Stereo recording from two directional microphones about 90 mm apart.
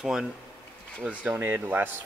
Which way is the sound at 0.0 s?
5° right (ahead or behind).